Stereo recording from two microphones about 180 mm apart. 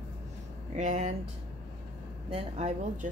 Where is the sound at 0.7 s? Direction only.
40° right (ahead or behind).